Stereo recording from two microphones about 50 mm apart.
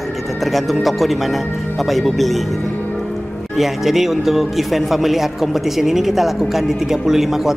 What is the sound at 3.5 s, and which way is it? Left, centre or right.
Speech, centre.